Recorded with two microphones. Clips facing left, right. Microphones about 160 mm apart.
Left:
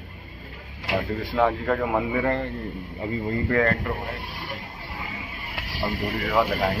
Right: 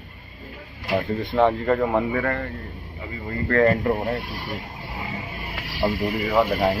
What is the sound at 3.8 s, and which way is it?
Speech, 40° right (ahead or behind).